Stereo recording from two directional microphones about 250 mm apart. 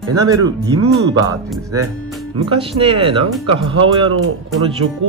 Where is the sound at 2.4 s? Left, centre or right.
Right.